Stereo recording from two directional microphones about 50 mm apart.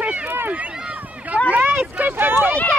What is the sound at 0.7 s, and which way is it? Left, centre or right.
Run, centre.